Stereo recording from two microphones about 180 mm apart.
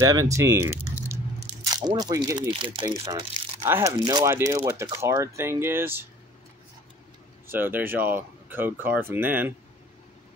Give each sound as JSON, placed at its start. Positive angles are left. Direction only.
{"t": 0.0, "sound": "speech", "side_deg": -20}
{"t": 3.7, "sound": "speech", "side_deg": -15}
{"t": 7.4, "sound": "speech", "side_deg": -10}